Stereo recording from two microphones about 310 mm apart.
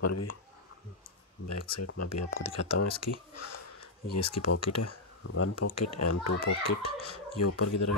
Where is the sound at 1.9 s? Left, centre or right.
Left.